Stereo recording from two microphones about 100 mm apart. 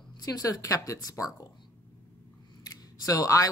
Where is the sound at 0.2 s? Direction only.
40° left (ahead or behind).